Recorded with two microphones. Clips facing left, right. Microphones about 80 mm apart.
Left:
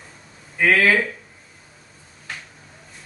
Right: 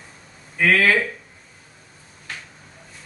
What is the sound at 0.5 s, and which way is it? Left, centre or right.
Speech, centre.